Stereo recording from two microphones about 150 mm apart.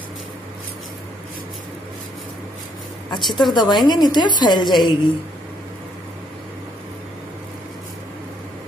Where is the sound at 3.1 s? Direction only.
30° left (ahead or behind).